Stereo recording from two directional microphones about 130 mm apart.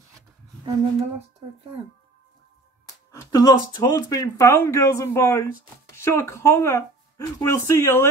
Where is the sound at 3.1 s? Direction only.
25° left (ahead or behind).